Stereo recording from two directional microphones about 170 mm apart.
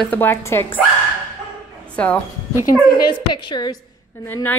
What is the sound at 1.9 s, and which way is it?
Speech, 5° left (ahead or behind).